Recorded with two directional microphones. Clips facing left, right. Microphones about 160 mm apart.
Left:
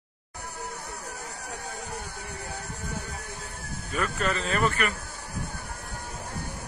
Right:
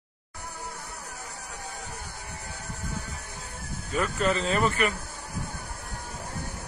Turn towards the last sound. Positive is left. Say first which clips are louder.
# right 1 dB
turn(degrees=-20)  # may be behind; listen again after turning